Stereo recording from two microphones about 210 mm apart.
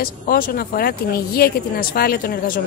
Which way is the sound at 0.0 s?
45° left (ahead or behind).